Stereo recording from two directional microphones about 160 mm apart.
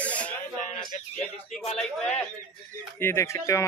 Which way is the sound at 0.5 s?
50° left (ahead or behind).